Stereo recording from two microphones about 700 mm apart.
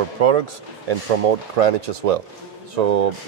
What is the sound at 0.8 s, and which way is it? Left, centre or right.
Speech, right.